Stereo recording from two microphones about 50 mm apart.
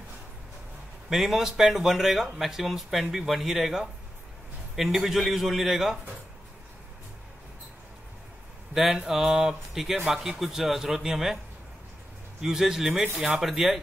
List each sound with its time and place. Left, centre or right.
1.1 s speech: centre
8.7 s a man's voice: centre
12.4 s a man's voice: centre